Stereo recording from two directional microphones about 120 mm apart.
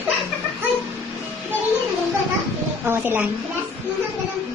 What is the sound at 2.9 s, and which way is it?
Speech, 15° right (ahead or behind).